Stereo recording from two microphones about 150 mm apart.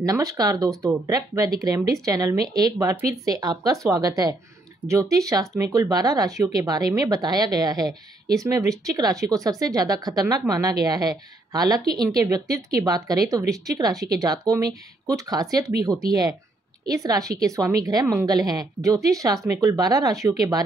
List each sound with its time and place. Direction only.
0.0 s speech: 25° right (ahead or behind)